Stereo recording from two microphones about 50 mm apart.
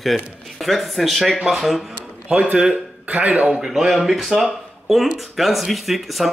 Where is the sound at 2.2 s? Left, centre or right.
Right.